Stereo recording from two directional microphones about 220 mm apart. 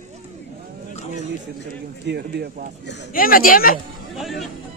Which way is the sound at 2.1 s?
50° right (ahead or behind).